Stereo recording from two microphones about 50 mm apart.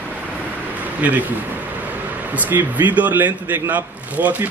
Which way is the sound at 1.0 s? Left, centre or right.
Right.